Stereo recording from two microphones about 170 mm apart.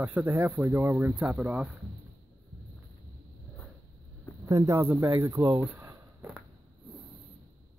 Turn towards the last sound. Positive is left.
turn(degrees=-10)  # may be behind; listen again after turning